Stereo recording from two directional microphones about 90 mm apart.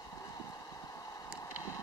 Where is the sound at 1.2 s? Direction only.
35° left (ahead or behind).